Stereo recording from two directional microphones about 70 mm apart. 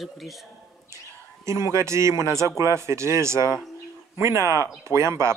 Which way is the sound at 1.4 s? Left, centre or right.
Right.